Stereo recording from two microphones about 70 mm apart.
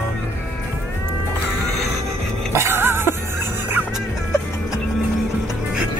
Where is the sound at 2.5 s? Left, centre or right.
Right.